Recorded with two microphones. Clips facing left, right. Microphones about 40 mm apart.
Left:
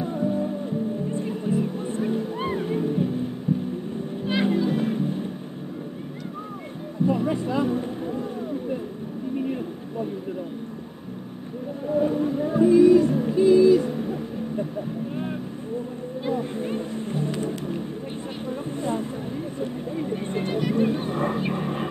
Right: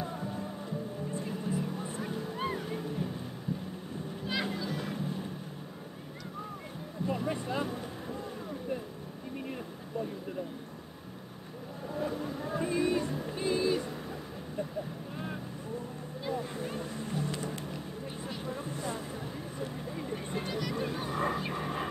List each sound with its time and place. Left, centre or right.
0.0 s music: centre
3.5 s vehicle: left
4.3 s music: left
7.1 s music: centre
7.4 s speech: centre
11.9 s a sound: left
13.0 s female singing: left
13.5 s owl: right
13.7 s owl: left
16.3 s music: left
18.5 s a sound: left
19.6 s vehicle: left